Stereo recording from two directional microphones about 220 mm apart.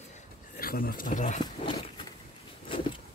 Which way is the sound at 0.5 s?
40° left (ahead or behind).